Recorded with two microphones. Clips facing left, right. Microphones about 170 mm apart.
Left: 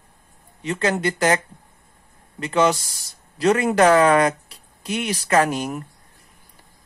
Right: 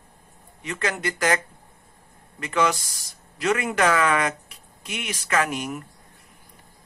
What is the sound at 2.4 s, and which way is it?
Speech, 25° left (ahead or behind).